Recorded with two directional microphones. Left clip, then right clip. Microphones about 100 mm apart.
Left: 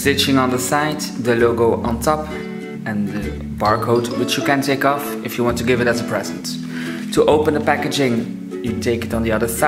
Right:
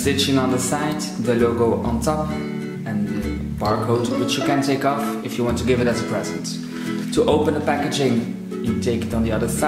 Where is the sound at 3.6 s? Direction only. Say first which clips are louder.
Left 4 dB; 45° left (ahead or behind).